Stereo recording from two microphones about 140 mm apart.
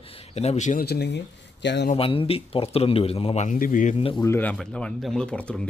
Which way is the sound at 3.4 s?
75° left (ahead or behind).